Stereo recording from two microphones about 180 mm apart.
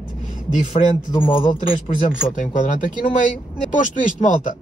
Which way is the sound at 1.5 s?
45° left (ahead or behind).